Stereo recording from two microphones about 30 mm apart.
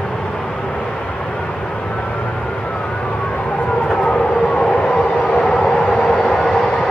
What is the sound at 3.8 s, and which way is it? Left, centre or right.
Civil defense siren, left.